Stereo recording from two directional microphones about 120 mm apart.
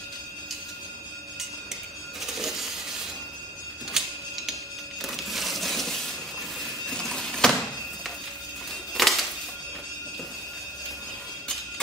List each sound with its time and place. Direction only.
2.2 s coin: 5° right (ahead or behind)
3.9 s music: 5° right (ahead or behind)
5.0 s crushing: centre (ahead or behind)
6.9 s printer: 5° left (ahead or behind)
9.0 s music: centre (ahead or behind)